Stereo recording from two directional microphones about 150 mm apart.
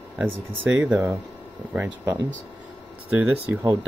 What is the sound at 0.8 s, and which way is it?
Speech, 20° right (ahead or behind).